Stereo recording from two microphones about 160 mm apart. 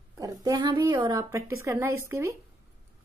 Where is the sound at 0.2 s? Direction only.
25° right (ahead or behind).